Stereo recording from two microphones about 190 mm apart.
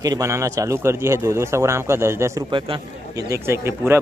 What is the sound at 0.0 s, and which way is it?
A man's voice, 15° right (ahead or behind).